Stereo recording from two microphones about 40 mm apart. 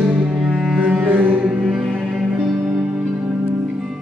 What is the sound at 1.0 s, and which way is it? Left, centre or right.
Music, right.